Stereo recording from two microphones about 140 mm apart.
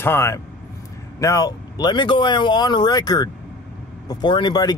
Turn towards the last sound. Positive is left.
turn(degrees=30)  # may be behind; listen again after turning